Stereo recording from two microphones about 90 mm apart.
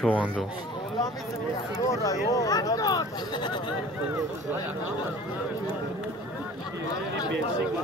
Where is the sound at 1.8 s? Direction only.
35° left (ahead or behind).